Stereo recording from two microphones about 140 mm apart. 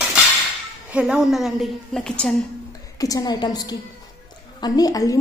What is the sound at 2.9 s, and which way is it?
A woman's voice, 25° left (ahead or behind).